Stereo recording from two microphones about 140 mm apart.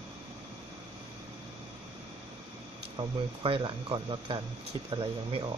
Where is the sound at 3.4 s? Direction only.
40° right (ahead or behind).